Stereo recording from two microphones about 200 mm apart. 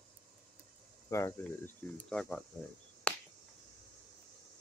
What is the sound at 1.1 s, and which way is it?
Speech, 10° left (ahead or behind).